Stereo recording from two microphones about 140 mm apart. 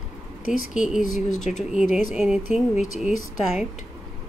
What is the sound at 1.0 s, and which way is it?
Speech, 65° left (ahead or behind).